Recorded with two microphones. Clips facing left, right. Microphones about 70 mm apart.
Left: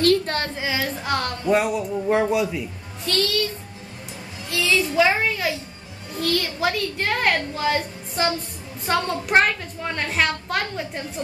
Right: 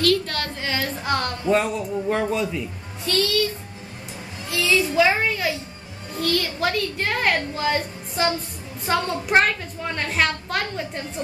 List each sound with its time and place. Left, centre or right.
0.0 s a sound: left
0.6 s music: centre
1.5 s a man's voice: centre
3.1 s a woman's voice: centre
4.5 s a sound: centre
6.1 s a woman's voice: centre